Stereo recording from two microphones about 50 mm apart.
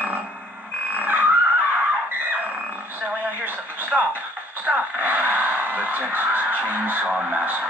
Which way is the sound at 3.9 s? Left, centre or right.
Centre.